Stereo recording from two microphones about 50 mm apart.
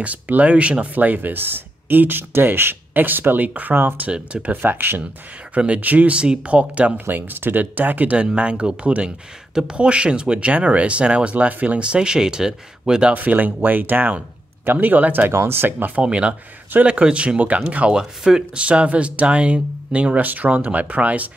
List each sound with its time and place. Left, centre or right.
0.0 s speech: right
4.1 s speech: right
4.5 s speech: right
5.5 s speech: right
7.1 s speech: right
8.2 s speech: right
13.1 s speech: right
15.3 s speech: right
16.0 s speech: right